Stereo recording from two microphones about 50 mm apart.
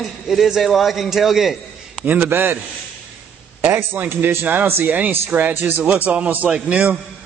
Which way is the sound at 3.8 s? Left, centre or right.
Right.